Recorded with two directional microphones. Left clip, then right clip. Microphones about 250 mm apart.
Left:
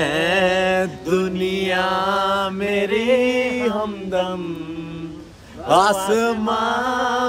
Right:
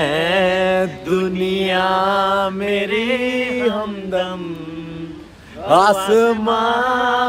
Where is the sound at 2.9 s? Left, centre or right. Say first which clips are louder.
Left 1 dB; left.